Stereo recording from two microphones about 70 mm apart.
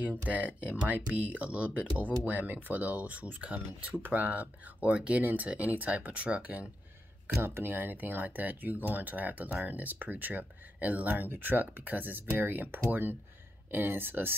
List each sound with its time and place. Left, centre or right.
0.0 s speech: right
7.4 s speech: right